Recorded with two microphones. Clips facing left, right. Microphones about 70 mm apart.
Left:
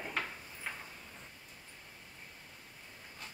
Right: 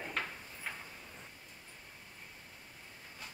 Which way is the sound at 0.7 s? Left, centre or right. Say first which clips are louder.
Left 1 dB; centre.